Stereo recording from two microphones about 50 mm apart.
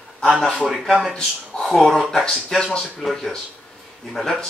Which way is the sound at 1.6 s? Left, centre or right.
Centre.